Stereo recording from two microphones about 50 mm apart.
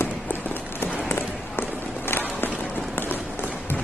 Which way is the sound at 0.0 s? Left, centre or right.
Left.